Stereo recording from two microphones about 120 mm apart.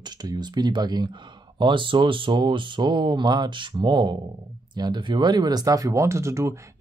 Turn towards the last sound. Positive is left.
turn(degrees=-25)  # may be behind; listen again after turning